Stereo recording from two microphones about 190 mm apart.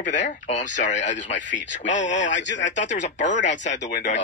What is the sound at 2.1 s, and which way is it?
Speech, 70° left (ahead or behind).